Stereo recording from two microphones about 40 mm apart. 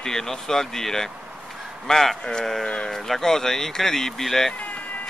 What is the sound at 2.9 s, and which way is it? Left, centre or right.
Speech, centre.